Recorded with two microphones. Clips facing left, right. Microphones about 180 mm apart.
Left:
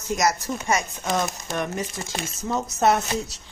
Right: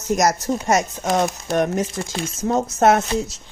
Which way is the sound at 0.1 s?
40° right (ahead or behind).